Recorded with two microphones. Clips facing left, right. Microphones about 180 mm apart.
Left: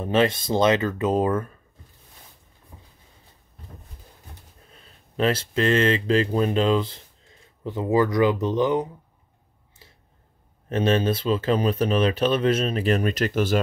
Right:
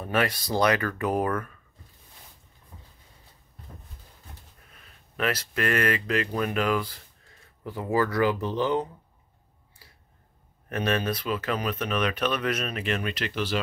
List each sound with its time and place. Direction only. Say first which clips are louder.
0.0 s speech: left 6 dB; 25° left (ahead or behind)
4.6 s speech: left 4 dB; 30° left (ahead or behind)
9.8 s a sound: left 4 dB; 25° left (ahead or behind)
10.7 s speech: left 6 dB; 25° left (ahead or behind); by 13.6 s 45° left (ahead or behind)